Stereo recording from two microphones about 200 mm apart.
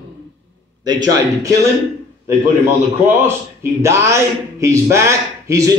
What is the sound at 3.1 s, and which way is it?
A man's voice, 15° right (ahead or behind).